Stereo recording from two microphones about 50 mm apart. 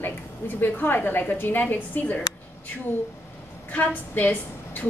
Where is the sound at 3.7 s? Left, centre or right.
Left.